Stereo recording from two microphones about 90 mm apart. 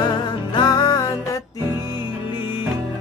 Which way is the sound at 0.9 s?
40° left (ahead or behind).